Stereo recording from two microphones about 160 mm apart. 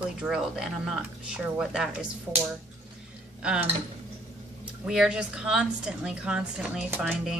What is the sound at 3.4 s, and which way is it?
Speech, 5° right (ahead or behind).